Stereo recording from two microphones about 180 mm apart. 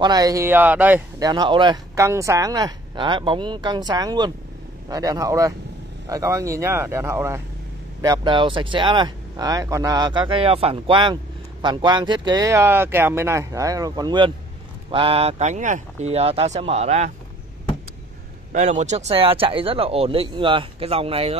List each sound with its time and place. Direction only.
0.0 s speech: 20° right (ahead or behind)
1.2 s speech: 25° right (ahead or behind)
18.5 s speech: 40° right (ahead or behind)